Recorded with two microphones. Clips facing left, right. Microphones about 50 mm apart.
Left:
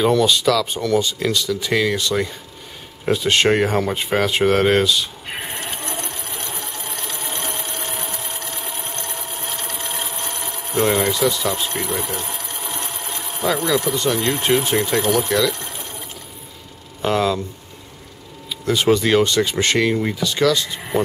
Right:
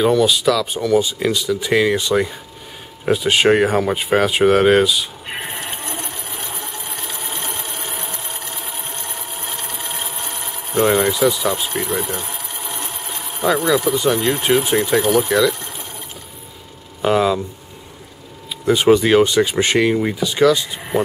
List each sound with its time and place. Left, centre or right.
0.0 s speech: centre
3.1 s a sound: centre
17.0 s speech: centre
18.7 s speech: centre